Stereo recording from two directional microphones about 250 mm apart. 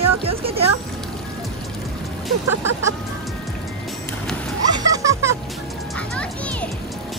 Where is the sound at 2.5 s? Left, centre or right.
Right.